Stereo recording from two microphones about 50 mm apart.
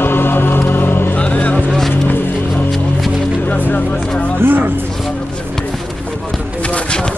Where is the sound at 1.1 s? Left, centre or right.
Left.